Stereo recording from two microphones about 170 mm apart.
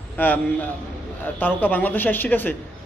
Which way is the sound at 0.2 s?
10° left (ahead or behind).